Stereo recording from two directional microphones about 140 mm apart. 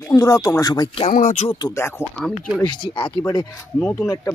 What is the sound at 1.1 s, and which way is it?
Speech, 60° left (ahead or behind).